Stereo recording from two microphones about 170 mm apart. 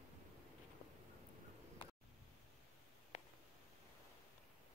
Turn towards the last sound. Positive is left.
turn(degrees=45)  # may be behind; listen again after turning